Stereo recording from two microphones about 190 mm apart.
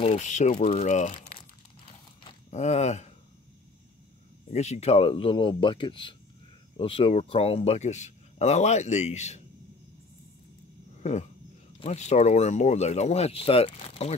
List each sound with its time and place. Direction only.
0.0 s speech: 35° left (ahead or behind)
2.5 s speech: 35° left (ahead or behind)
4.5 s speech: 35° left (ahead or behind)
11.0 s dog: 35° left (ahead or behind)
11.8 s speech: 35° left (ahead or behind)